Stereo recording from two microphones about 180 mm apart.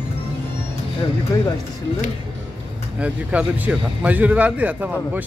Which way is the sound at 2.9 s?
5° right (ahead or behind).